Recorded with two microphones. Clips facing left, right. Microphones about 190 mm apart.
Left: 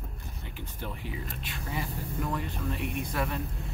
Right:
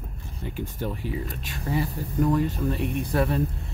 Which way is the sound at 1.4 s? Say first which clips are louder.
Right 9 dB; 40° right (ahead or behind).